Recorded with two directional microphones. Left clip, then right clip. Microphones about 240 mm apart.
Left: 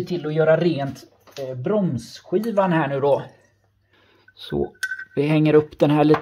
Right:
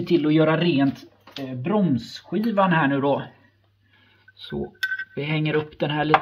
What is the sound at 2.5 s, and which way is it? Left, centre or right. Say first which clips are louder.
Speech: right 2 dB; left.